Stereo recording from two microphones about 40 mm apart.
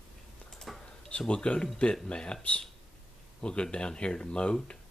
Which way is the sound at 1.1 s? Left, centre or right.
Left.